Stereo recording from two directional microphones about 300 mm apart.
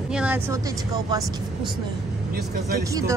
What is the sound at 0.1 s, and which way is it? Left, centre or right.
Speech, centre.